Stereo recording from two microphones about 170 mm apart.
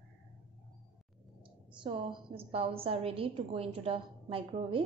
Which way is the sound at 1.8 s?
30° right (ahead or behind).